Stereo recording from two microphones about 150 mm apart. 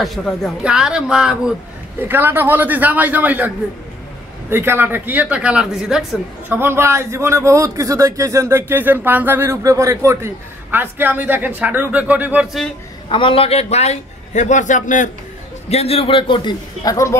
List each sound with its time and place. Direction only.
0.0 s a man's voice: centre (ahead or behind)
6.5 s a man's voice: 15° right (ahead or behind)
13.1 s a man's voice: 35° left (ahead or behind); by 15.0 s 60° left (ahead or behind)
15.7 s a man's voice: 40° left (ahead or behind); by 17.1 s 25° left (ahead or behind)